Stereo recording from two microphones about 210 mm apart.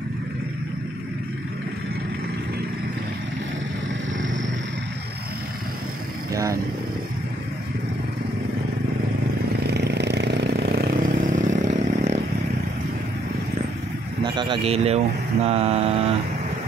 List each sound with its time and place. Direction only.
6.3 s speech: 15° right (ahead or behind)
9.6 s vehicle: 50° right (ahead or behind); by 11.8 s 35° right (ahead or behind)
14.2 s speech: 20° right (ahead or behind)
15.4 s mantra: 30° right (ahead or behind)